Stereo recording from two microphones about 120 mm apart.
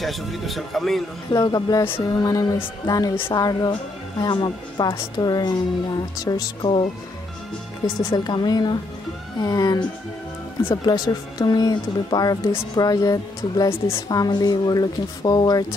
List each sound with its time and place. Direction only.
0.0 s speech: centre (ahead or behind)
1.3 s speech: 30° left (ahead or behind)
8.0 s speech: 35° left (ahead or behind)